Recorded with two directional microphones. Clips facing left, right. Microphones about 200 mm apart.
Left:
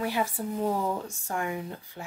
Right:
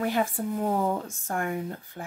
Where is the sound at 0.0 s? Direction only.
50° right (ahead or behind).